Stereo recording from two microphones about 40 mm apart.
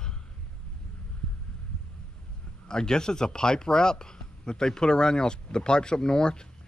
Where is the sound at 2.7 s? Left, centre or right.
Centre.